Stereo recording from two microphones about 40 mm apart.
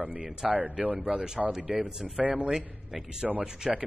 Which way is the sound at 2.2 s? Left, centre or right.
Right.